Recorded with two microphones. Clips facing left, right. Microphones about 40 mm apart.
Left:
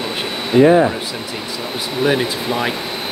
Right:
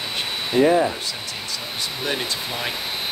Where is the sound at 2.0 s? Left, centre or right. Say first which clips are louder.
Left 10 dB; centre.